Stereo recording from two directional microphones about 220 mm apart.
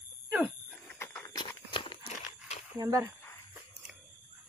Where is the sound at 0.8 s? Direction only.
10° left (ahead or behind).